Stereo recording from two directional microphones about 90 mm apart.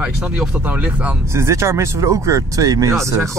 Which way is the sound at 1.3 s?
30° right (ahead or behind).